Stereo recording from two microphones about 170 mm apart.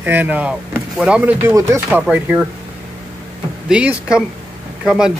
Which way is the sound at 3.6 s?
5° right (ahead or behind).